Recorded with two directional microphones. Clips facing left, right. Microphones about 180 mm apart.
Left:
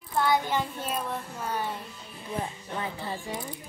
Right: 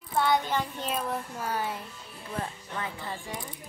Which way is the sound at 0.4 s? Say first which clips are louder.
Left 1 dB; 15° left (ahead or behind).